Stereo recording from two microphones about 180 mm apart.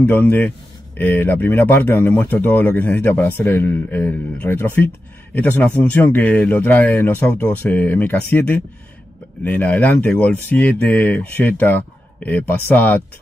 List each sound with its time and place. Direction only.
0.0 s speech: 10° left (ahead or behind)